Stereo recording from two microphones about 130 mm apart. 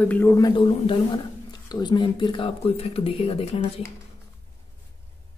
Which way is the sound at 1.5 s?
30° left (ahead or behind).